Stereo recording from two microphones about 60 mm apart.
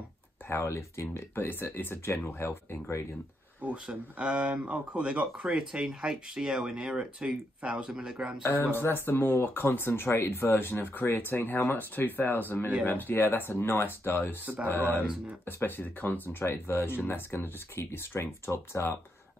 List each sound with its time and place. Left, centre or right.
0.5 s speech: left
3.6 s speech: centre
8.7 s speech: left